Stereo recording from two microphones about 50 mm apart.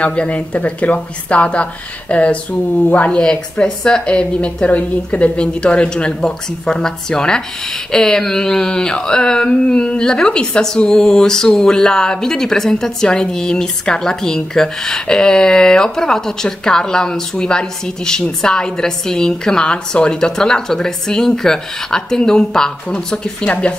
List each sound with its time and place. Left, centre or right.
0.0 s a woman's voice: left
3.1 s a woman's voice: centre
7.9 s a sound: centre